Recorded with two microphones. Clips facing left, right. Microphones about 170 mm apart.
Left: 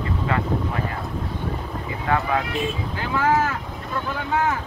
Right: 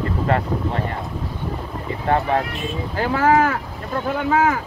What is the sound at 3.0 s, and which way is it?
Speech, 50° right (ahead or behind).